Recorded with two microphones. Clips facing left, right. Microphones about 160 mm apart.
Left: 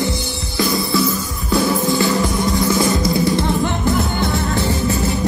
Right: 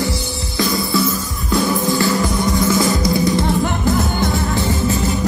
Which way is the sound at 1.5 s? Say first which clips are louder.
Even; 20° left (ahead or behind).